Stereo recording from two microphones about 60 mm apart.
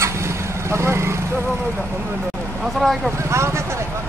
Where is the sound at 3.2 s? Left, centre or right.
Right.